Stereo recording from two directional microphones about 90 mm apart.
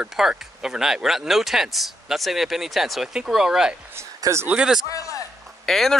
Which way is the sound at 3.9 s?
30° right (ahead or behind).